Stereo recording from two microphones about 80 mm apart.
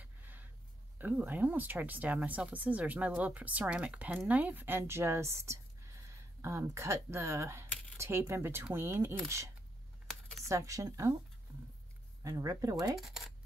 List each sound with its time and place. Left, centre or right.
0.0 s a sound: right
0.9 s speech: right
10.0 s computer keyboard: centre
10.5 s speech: right
12.2 s speech: right
13.0 s speech: centre